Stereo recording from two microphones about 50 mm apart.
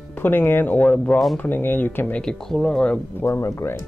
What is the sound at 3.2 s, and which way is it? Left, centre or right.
Speech, left.